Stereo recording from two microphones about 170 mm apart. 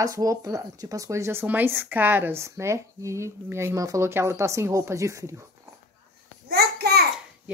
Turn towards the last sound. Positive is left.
turn(degrees=-70)  # may be behind; listen again after turning